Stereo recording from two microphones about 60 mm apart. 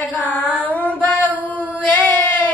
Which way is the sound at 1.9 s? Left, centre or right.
Left.